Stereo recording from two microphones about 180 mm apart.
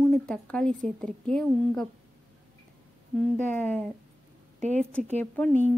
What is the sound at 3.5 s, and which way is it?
Speech, 10° left (ahead or behind).